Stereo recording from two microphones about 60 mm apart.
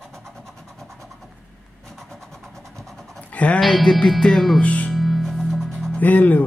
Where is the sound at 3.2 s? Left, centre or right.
Left.